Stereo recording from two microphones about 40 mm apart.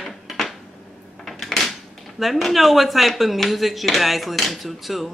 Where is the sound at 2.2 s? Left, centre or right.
Centre.